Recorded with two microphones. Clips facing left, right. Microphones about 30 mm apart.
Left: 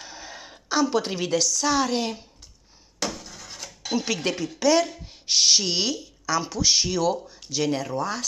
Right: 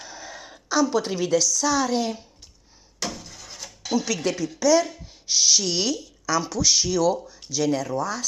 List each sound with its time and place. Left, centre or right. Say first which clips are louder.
0.0 s a sound: right 1 dB; left
0.7 s speech: right 1 dB; left
3.9 s speech: right 1 dB; left